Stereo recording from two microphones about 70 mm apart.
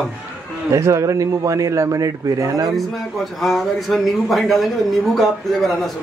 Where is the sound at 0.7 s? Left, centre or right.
Right.